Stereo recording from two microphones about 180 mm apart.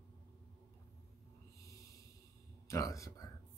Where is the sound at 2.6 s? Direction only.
15° left (ahead or behind).